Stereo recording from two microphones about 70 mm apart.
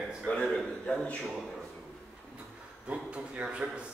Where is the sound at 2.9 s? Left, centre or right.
Centre.